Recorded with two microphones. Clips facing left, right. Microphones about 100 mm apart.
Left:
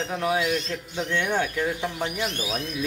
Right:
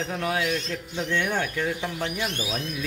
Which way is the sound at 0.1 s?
10° left (ahead or behind).